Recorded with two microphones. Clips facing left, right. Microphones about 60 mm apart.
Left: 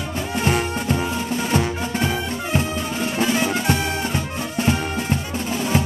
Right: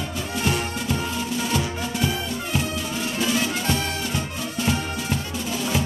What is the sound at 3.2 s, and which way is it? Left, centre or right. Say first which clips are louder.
Music: left 3 dB; left.